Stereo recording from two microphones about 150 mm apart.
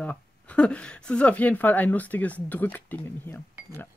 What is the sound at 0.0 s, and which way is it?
Speech, 10° left (ahead or behind).